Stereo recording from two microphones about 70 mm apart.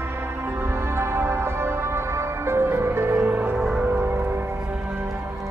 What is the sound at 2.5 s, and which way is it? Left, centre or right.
Music, right.